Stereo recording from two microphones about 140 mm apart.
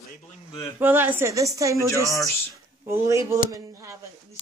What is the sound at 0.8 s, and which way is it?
Speech, 15° right (ahead or behind).